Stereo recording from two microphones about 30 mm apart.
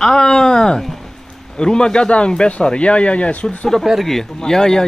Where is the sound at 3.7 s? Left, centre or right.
Centre.